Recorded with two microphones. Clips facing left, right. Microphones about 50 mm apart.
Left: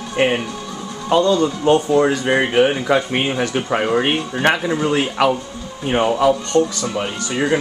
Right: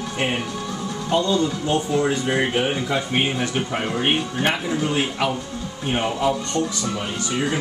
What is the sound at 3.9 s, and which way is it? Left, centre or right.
Speech, left.